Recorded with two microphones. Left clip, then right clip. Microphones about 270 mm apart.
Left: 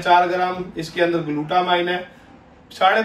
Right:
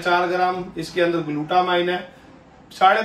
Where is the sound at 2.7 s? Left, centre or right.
Centre.